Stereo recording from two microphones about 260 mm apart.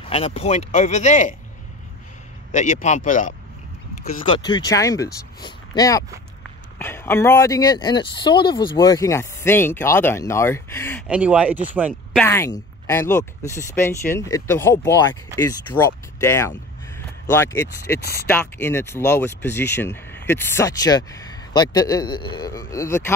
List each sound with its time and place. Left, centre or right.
0.1 s speech: left
2.5 s speech: left; by 11.0 s centre
11.1 s speech: centre
12.3 s speech: centre